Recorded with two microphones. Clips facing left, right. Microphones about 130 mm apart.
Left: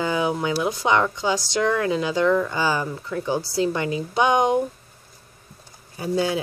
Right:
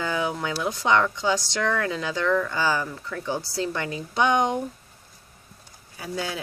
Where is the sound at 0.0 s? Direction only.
10° left (ahead or behind).